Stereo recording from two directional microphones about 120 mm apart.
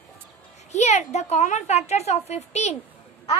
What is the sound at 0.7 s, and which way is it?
A woman's voice, 70° left (ahead or behind).